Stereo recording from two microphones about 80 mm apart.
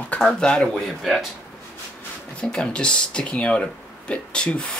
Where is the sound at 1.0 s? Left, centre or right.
Centre.